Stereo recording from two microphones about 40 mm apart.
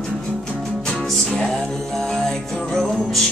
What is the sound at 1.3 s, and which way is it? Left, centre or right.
Music, centre.